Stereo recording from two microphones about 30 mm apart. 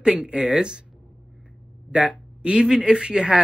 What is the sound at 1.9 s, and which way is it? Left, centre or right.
Speech, right.